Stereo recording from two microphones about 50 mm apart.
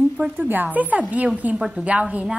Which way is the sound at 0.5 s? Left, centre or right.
Right.